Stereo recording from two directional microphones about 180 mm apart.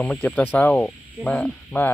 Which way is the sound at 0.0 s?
5° left (ahead or behind).